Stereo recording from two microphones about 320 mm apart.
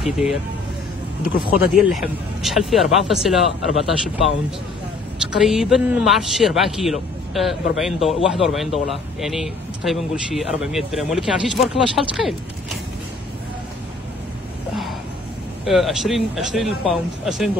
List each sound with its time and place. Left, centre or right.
0.0 s a man's voice: centre
1.8 s a man's voice: centre
15.6 s a man's voice: centre